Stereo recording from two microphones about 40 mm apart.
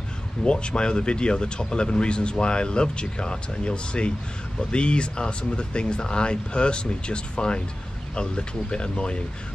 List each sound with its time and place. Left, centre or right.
0.4 s speech: left